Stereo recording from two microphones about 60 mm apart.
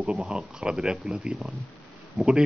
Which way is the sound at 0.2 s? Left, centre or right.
Centre.